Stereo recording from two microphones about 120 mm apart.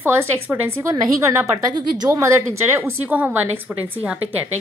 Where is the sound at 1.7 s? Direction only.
35° right (ahead or behind).